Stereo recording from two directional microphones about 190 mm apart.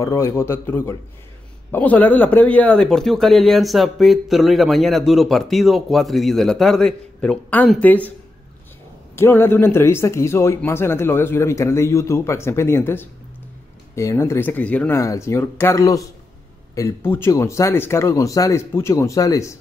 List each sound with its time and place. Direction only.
0.0 s speech: 15° left (ahead or behind)
9.1 s speech: 10° left (ahead or behind)